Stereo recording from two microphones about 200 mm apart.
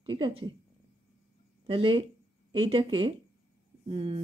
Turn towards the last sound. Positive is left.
turn(degrees=-25)  # may be behind; listen again after turning